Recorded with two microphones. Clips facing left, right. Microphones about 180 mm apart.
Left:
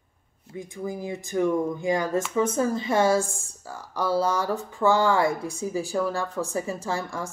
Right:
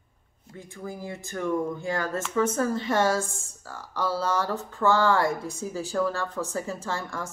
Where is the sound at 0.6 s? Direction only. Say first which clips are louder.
Left 5 dB; 15° left (ahead or behind).